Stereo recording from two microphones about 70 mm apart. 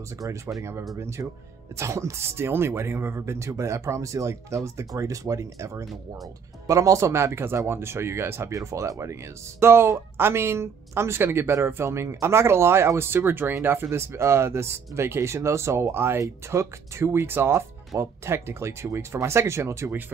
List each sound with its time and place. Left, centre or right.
0.6 s speech: right
8.5 s speech: right